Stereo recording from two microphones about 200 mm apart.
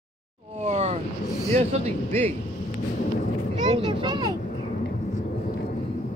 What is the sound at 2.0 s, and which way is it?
Speech, 10° left (ahead or behind).